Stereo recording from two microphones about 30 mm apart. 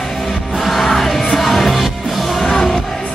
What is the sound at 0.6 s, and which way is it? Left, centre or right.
Music, centre.